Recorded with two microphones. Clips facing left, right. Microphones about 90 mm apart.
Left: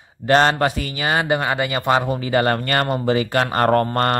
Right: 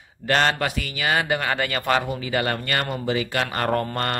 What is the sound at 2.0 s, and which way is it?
Speech, 40° left (ahead or behind).